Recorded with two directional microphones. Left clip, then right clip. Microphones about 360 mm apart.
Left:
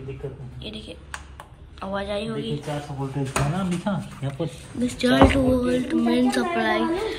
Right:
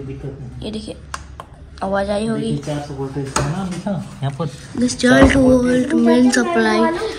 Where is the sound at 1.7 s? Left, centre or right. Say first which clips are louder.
Right 9 dB; centre.